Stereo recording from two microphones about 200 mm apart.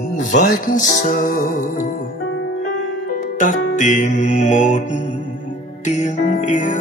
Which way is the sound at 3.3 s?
40° left (ahead or behind).